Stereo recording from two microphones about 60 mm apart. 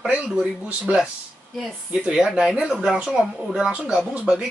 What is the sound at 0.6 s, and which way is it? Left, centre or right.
Speech, right.